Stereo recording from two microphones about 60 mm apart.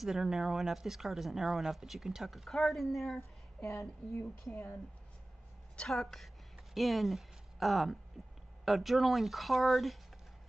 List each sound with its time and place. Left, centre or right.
0.0 s speech: centre
3.2 s speech: left
4.5 s speech: left
5.9 s a woman's voice: centre